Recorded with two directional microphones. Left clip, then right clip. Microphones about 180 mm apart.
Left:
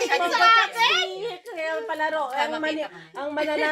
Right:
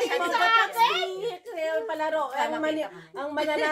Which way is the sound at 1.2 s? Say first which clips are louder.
Even; 35° left (ahead or behind).